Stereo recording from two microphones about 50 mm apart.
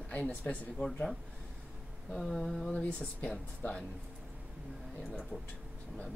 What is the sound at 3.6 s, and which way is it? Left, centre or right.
Speech, left.